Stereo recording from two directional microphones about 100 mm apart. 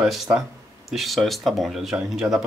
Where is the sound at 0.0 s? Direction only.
5° right (ahead or behind).